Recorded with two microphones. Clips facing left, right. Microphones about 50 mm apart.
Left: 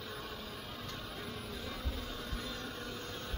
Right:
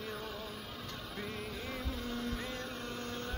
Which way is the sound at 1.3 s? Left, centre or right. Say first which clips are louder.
Right 2 dB; right.